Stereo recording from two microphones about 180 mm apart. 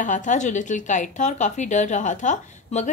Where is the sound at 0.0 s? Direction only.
45° left (ahead or behind).